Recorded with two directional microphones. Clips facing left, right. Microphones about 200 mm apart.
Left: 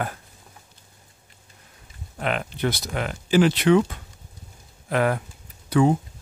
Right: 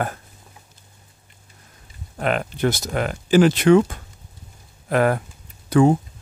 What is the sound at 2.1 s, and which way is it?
Speech, 45° right (ahead or behind).